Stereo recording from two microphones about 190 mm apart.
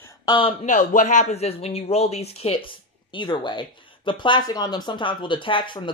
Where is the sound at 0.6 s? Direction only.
40° left (ahead or behind).